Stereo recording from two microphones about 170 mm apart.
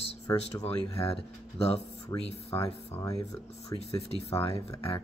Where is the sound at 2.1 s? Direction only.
20° left (ahead or behind).